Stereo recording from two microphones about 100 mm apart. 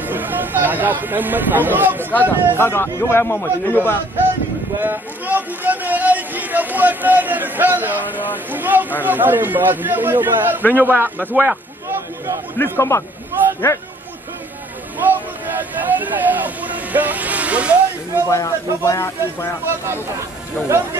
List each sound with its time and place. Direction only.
0.0 s speech: 20° right (ahead or behind)
2.5 s speech: 25° left (ahead or behind)
4.7 s a man's voice: 20° right (ahead or behind)
12.5 s speech: 25° left (ahead or behind)
15.0 s a sound: 20° right (ahead or behind)
15.7 s speech: 15° right (ahead or behind)
18.3 s speech: 30° left (ahead or behind)
19.7 s a man's voice: 25° right (ahead or behind)